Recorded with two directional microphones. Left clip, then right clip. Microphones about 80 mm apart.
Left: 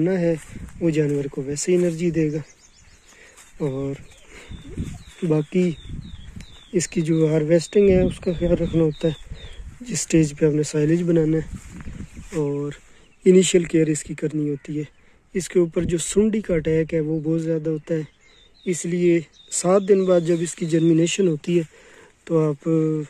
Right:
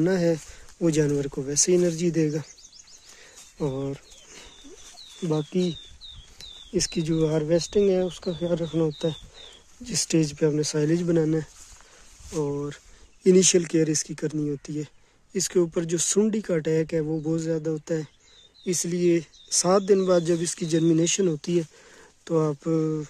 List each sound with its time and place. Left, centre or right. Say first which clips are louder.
0.0 s speech: left 2 dB; right
0.7 s speech: left 2 dB; right
1.2 s speech: even; right
3.6 s speech: left 3 dB; right
5.5 s speech: left 4 dB; centre
9.8 s speech: even; centre
10.1 s speech: left 5 dB; centre
10.6 s speech: left 3 dB; centre
13.2 s speech: left 3 dB; right